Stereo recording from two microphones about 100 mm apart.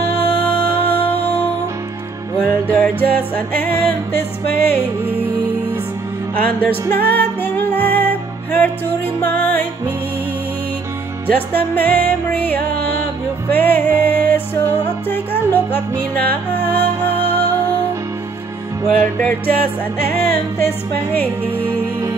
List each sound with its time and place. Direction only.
0.4 s music: 20° left (ahead or behind)
2.6 s music: 15° left (ahead or behind)
6.3 s music: 15° left (ahead or behind)
11.2 s music: 20° left (ahead or behind)
18.9 s music: 15° left (ahead or behind)
20.1 s music: 25° left (ahead or behind)
21.5 s music: 20° right (ahead or behind)